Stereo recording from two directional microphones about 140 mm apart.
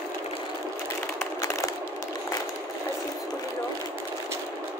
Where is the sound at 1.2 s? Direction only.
20° left (ahead or behind).